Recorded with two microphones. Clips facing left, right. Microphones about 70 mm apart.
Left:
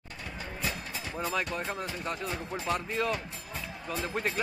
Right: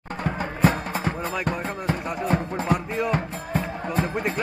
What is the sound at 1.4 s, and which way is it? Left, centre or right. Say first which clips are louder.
Speech: right 6 dB; right.